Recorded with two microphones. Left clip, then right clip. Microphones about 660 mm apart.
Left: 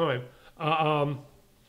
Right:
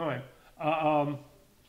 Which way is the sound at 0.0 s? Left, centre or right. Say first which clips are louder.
Left 6 dB; left.